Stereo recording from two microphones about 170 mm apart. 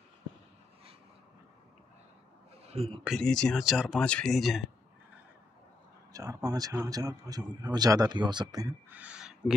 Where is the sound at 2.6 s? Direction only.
35° right (ahead or behind).